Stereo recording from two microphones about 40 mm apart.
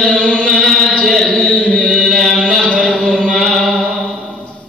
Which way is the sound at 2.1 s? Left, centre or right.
Centre.